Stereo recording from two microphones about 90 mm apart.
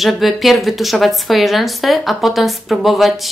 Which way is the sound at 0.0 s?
Centre (ahead or behind).